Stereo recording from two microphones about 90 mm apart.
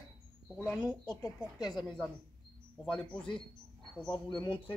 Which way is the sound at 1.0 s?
50° left (ahead or behind).